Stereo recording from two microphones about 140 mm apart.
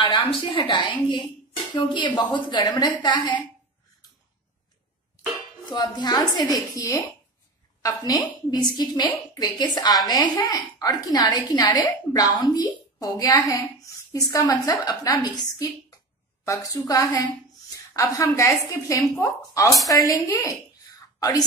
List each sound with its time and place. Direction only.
0.0 s a woman's voice: 40° left (ahead or behind)
5.7 s a woman's voice: 30° left (ahead or behind)
16.4 s a woman's voice: 25° left (ahead or behind)